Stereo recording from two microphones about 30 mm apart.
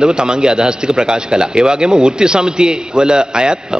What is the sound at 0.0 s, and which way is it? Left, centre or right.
A man's voice, right.